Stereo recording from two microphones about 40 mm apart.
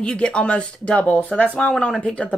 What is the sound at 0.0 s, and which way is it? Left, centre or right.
Speech, left.